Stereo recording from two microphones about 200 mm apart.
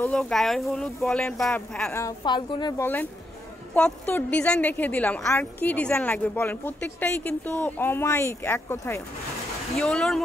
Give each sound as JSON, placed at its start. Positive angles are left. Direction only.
{"t": 0.0, "sound": "speech", "side_deg": 5}
{"t": 2.0, "sound": "a woman's voice", "side_deg": 20}
{"t": 2.8, "sound": "a woman's voice", "side_deg": 10}